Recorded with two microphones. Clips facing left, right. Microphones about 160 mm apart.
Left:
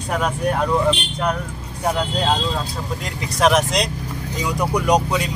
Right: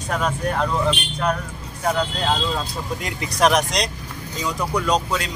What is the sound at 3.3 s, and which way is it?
Speech, centre (ahead or behind).